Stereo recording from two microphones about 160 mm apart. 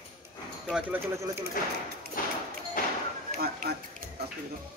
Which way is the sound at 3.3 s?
70° right (ahead or behind).